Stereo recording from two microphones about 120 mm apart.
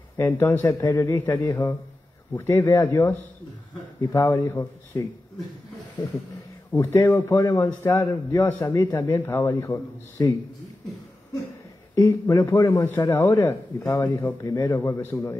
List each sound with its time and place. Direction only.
0.3 s a man's voice: 15° left (ahead or behind)
6.7 s a man's voice: 20° left (ahead or behind)
11.9 s a man's voice: 25° left (ahead or behind)